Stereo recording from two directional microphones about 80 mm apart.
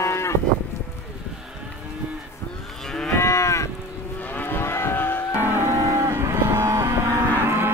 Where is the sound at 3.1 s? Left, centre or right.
Left.